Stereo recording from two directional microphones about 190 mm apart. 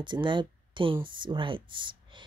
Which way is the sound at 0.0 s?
25° right (ahead or behind).